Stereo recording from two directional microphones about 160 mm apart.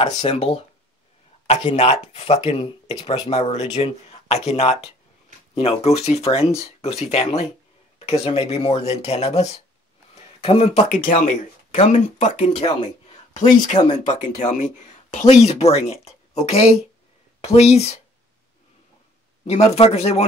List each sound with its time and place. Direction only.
0.0 s speech: 40° left (ahead or behind)
1.5 s speech: 40° left (ahead or behind)
19.4 s speech: 40° left (ahead or behind)